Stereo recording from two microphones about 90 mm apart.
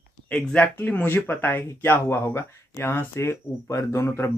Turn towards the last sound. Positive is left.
turn(degrees=30)  # may be behind; listen again after turning